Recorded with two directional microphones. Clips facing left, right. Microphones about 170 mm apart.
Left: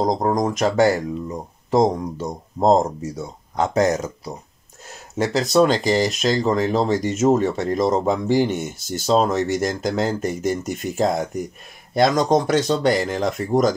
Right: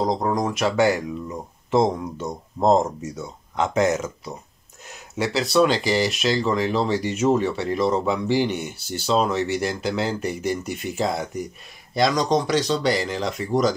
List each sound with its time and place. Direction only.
0.1 s speech: 40° left (ahead or behind)